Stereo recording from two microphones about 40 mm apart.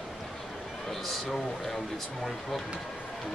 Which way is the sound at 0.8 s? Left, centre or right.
Centre.